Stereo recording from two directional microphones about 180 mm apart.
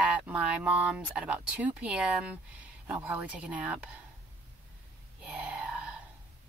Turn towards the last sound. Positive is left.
turn(degrees=-5)  # may be behind; listen again after turning